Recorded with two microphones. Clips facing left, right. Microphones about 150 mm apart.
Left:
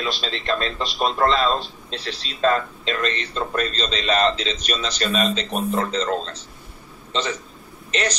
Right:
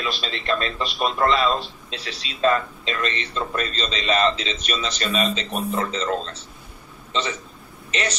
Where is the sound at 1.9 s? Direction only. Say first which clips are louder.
Left 3 dB; 35° left (ahead or behind).